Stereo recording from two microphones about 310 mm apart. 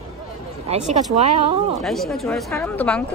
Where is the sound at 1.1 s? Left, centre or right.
Centre.